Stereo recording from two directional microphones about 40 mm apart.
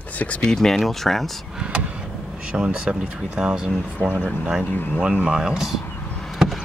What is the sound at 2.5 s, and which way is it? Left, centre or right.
Speech, right.